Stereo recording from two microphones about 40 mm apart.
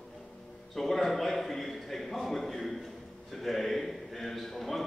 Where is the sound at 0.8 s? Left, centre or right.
Centre.